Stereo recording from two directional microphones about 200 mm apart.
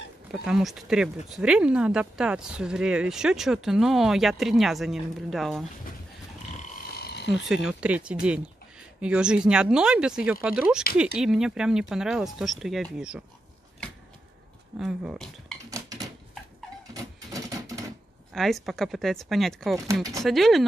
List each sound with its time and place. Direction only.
0.3 s speech: centre (ahead or behind)
6.9 s a sound: 50° left (ahead or behind)
7.2 s speech: centre (ahead or behind)
14.8 s speech: centre (ahead or behind)
15.7 s typewriter: 20° right (ahead or behind)
16.9 s a sound: 15° right (ahead or behind)
18.3 s speech: centre (ahead or behind)
19.9 s speech: 15° right (ahead or behind)
20.2 s speech: centre (ahead or behind)